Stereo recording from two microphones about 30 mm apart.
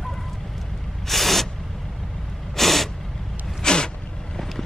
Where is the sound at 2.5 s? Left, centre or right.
Centre.